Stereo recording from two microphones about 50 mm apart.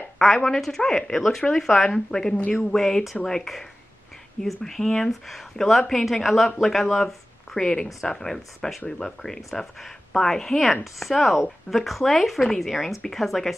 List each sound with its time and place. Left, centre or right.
0.2 s speech: centre
0.6 s a woman's voice: centre
2.7 s a woman's voice: centre